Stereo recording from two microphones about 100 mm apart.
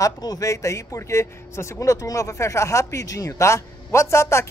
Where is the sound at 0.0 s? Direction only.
35° left (ahead or behind).